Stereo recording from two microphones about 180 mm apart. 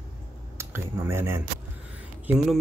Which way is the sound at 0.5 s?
15° right (ahead or behind).